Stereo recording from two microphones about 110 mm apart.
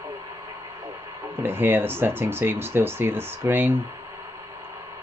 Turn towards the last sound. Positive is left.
turn(degrees=-20)  # may be behind; listen again after turning